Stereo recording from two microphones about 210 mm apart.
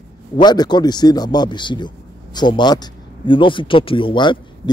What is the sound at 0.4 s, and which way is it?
Speech, 20° left (ahead or behind).